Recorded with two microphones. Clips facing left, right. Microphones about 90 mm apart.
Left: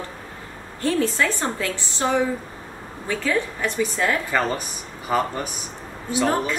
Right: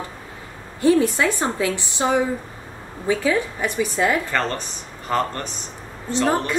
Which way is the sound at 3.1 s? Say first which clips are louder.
Right 3 dB; 15° right (ahead or behind).